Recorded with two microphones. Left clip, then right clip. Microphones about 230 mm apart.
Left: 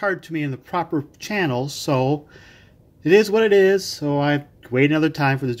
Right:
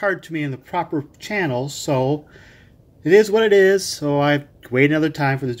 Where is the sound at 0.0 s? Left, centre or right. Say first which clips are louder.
Right 1 dB; centre.